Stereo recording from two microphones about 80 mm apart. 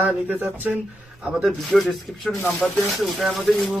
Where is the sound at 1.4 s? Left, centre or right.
Centre.